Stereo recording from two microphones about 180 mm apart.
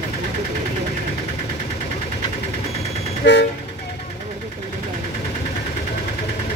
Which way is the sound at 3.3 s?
85° left.